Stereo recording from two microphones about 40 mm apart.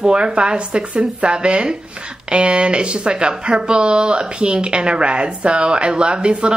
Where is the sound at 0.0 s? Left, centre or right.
Right.